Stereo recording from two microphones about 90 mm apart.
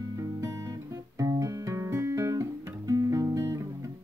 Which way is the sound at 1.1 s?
40° right (ahead or behind).